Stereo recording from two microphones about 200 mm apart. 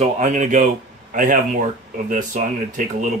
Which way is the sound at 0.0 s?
35° right (ahead or behind).